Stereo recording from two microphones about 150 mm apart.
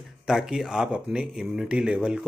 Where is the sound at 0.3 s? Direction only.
Centre (ahead or behind).